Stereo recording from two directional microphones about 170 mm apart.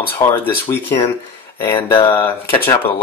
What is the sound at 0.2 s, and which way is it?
Speech, 15° left (ahead or behind).